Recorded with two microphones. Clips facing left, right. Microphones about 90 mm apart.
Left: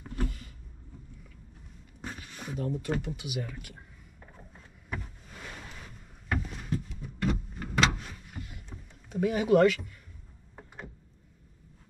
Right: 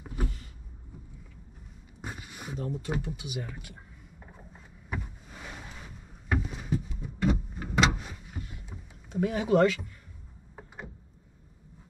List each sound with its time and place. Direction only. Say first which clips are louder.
0.0 s power windows: left 1 dB; 10° right (ahead or behind)
2.0 s speech: even; 10° right (ahead or behind)
4.2 s a sound: even; 10° right (ahead or behind)
9.1 s speech: left 1 dB; 25° right (ahead or behind)